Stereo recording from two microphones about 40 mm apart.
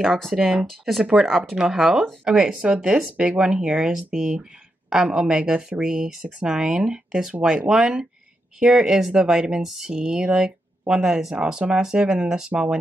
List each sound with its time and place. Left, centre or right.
0.0 s speech: centre
1.5 s speech: centre
7.1 s speech: centre